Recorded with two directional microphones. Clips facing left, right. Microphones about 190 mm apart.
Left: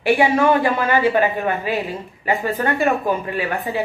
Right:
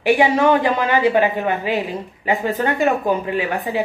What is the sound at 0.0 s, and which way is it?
Speech, 15° right (ahead or behind).